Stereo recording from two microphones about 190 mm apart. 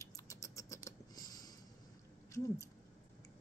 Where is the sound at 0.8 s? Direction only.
20° left (ahead or behind).